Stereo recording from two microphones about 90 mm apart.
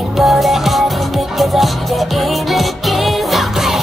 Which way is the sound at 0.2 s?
Centre (ahead or behind).